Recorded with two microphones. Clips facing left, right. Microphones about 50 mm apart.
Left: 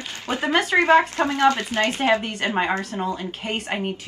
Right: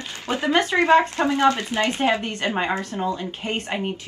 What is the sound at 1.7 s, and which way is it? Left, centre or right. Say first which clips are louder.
Speech: even; centre.